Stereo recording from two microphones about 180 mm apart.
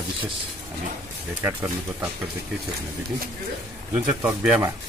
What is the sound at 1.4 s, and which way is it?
Speech, 10° right (ahead or behind).